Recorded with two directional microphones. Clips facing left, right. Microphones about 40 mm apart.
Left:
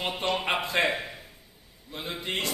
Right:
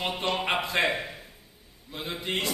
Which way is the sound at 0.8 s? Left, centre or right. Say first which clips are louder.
Even; centre.